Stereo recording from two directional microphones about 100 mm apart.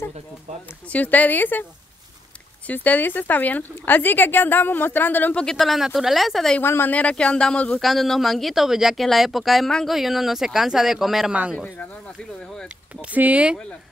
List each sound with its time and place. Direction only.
0.8 s speech: 15° left (ahead or behind)
5.4 s speech: 5° left (ahead or behind)
6.6 s speech: 20° left (ahead or behind); by 11.3 s centre (ahead or behind)
11.5 s speech: 10° left (ahead or behind)
13.0 s speech: 15° right (ahead or behind)